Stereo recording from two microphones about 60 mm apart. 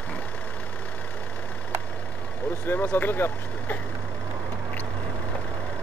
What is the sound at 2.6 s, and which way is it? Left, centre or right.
Speech, left.